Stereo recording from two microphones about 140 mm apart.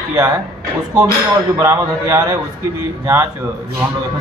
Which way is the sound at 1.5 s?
20° right (ahead or behind).